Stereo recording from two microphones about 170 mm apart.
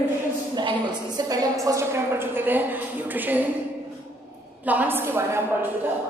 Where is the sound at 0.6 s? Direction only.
25° right (ahead or behind).